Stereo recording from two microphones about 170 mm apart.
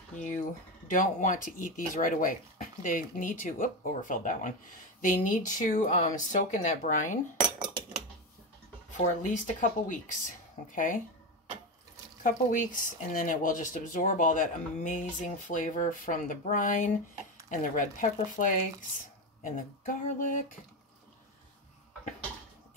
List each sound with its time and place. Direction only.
0.1 s a sound: 45° left (ahead or behind)
0.8 s speech: 50° left (ahead or behind)
8.9 s speech: 45° left (ahead or behind)
12.2 s speech: 50° left (ahead or behind)